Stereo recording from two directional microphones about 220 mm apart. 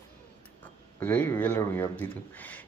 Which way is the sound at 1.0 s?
10° left (ahead or behind).